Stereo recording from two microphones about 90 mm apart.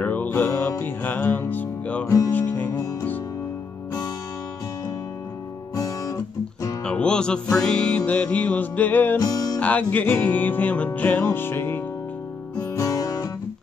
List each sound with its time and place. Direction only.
0.0 s music: 20° left (ahead or behind)
2.0 s music: 35° left (ahead or behind)
2.3 s music: 20° left (ahead or behind)
2.7 s music: 35° left (ahead or behind)
5.8 s guitar: 40° left (ahead or behind)
6.8 s music: 10° left (ahead or behind)
9.2 s music: 40° left (ahead or behind)
9.6 s music: 15° left (ahead or behind)
12.5 s music: 40° left (ahead or behind)